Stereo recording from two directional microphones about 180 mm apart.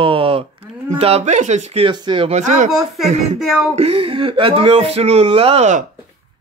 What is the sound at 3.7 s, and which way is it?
Speech, 35° right (ahead or behind).